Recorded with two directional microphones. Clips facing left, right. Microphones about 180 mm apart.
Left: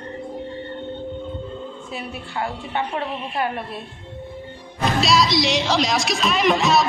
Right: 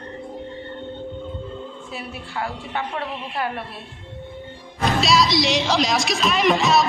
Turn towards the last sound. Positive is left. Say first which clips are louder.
# even
turn(degrees=0)  # may be behind; listen again after turning